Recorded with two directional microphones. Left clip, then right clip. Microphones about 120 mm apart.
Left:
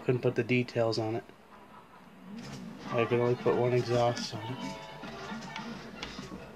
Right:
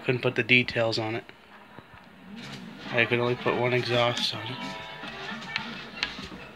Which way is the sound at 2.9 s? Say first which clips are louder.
Right 4 dB; 10° left (ahead or behind).